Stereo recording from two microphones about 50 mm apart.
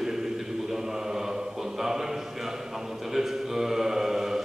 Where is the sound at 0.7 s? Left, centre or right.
Centre.